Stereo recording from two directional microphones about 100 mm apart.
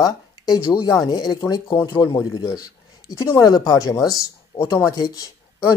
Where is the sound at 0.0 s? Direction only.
45° left (ahead or behind).